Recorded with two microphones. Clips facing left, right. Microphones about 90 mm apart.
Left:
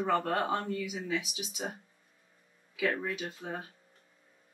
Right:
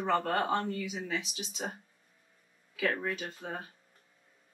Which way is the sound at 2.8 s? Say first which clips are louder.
Even; 5° left (ahead or behind).